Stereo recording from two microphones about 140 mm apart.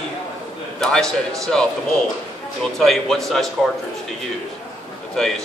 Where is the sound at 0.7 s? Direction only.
5° left (ahead or behind).